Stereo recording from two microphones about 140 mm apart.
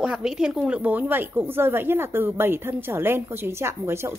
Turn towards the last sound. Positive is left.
turn(degrees=-20)  # may be behind; listen again after turning